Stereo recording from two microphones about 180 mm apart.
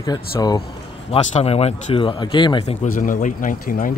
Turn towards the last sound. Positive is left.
turn(degrees=50)  # may be behind; listen again after turning